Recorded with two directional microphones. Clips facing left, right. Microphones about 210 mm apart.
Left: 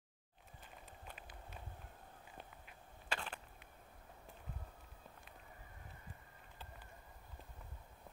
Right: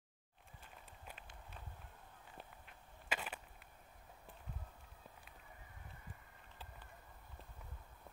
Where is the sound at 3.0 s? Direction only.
10° right (ahead or behind).